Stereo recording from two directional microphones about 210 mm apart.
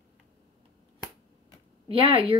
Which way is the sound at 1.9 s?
25° right (ahead or behind).